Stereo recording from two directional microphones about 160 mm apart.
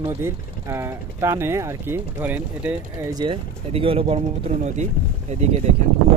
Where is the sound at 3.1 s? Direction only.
30° right (ahead or behind).